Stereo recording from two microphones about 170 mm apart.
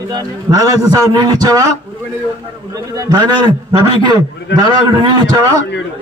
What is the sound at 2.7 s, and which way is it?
A man's voice, 20° right (ahead or behind).